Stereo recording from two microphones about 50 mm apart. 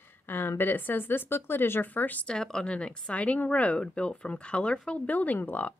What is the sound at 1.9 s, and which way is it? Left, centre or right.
Speech, left.